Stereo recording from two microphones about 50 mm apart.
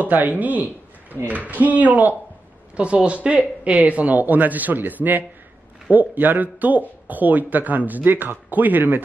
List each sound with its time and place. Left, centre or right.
0.0 s speech: right
2.7 s speech: right